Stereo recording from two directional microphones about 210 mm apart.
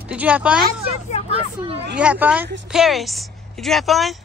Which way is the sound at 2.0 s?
5° right (ahead or behind).